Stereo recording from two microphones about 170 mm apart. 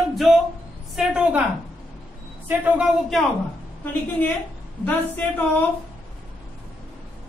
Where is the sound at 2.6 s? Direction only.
5° right (ahead or behind).